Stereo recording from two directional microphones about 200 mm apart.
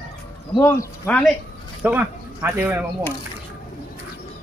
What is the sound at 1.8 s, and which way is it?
Speech, 10° right (ahead or behind).